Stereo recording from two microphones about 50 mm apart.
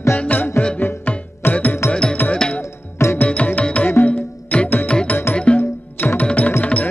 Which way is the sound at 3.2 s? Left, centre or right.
Left.